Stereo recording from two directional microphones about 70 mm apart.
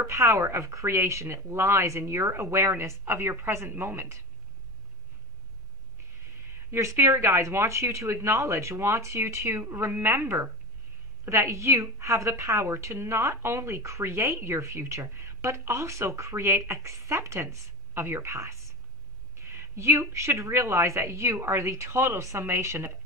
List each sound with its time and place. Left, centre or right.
0.0 s a woman's voice: right
6.7 s a woman's voice: right